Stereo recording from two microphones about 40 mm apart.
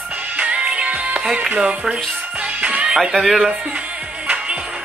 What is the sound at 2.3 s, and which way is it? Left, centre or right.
Music, right.